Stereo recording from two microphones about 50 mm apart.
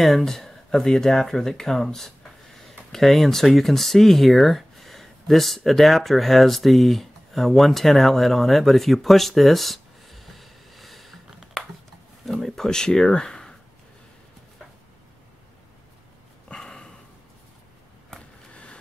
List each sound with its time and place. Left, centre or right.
0.0 s speech: centre
12.3 s speech: centre
16.5 s a sound: centre
18.5 s vehicle: left